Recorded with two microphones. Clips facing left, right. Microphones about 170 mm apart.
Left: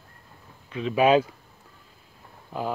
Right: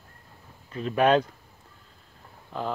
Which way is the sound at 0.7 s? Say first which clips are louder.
Left 2 dB; 40° right (ahead or behind).